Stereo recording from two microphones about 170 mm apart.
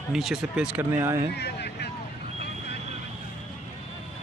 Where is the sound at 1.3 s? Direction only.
75° left (ahead or behind).